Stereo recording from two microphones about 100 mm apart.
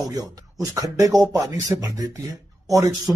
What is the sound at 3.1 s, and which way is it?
Speech, 20° right (ahead or behind).